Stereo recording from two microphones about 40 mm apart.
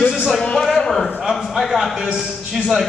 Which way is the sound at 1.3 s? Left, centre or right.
Centre.